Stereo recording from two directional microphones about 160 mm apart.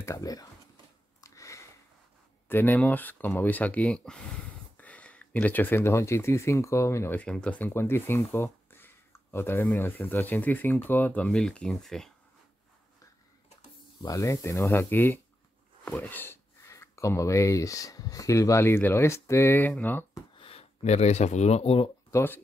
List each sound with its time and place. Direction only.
0.0 s speech: 20° left (ahead or behind)
1.2 s a sound: 20° left (ahead or behind)
2.4 s speech: 15° left (ahead or behind)
14.0 s speech: 20° left (ahead or behind)
20.3 s speech: 35° left (ahead or behind)
22.1 s speech: 15° left (ahead or behind)